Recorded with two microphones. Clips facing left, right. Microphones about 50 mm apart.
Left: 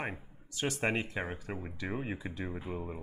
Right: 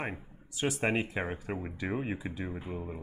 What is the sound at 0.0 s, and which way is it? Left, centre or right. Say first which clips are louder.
Speech: right 1 dB; centre.